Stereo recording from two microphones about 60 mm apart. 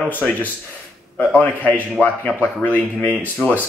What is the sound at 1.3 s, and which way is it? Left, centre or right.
A man's voice, left.